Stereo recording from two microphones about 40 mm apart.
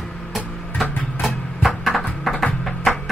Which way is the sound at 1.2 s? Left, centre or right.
Centre.